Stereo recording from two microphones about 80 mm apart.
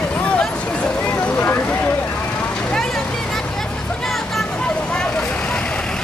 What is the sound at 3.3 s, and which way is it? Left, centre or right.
Vehicle, centre.